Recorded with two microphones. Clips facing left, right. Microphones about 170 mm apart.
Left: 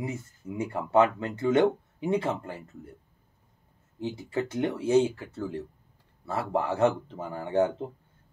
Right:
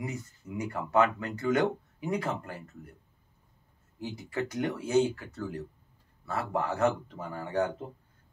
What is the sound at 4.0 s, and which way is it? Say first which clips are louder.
Speech: left 3 dB; 25° left (ahead or behind).